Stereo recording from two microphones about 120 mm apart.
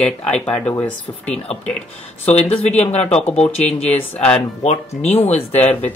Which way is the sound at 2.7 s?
65° left (ahead or behind).